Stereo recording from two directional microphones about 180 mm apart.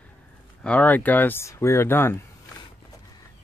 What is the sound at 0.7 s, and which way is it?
Speech, 10° left (ahead or behind).